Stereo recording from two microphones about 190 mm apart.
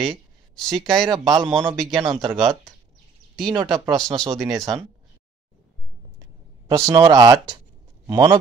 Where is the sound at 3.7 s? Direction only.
Centre (ahead or behind).